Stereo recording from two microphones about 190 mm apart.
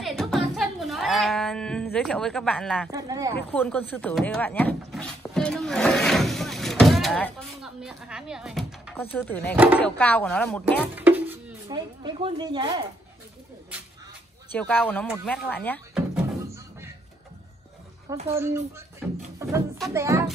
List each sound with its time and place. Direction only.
0.0 s a sound: centre (ahead or behind)
2.9 s speech: 20° right (ahead or behind)
3.3 s speech: 10° left (ahead or behind)
8.9 s speech: 10° left (ahead or behind)
10.8 s music: 10° right (ahead or behind)
11.7 s speech: 25° right (ahead or behind)
14.5 s speech: 10° left (ahead or behind)
18.3 s speech: 15° right (ahead or behind)
19.0 s music: 5° right (ahead or behind)
19.9 s speech: 15° right (ahead or behind)